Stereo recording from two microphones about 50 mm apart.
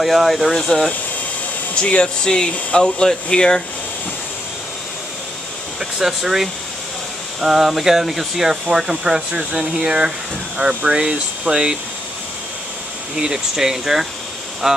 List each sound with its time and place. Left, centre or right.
0.0 s speech: centre
1.8 s speech: left
5.8 s speech: centre
13.1 s speech: centre